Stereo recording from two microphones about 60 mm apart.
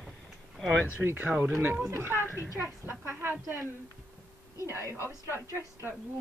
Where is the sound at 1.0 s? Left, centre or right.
Right.